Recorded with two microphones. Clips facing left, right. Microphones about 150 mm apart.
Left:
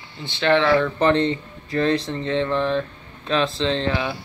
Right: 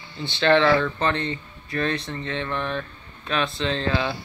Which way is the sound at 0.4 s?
15° left (ahead or behind).